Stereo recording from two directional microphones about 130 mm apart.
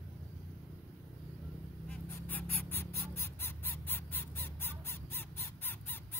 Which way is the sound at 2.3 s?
15° left (ahead or behind).